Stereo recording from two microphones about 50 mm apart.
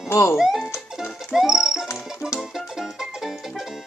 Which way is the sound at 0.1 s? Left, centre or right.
Left.